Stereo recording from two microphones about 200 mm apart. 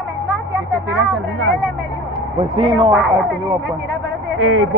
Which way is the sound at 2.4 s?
25° right (ahead or behind).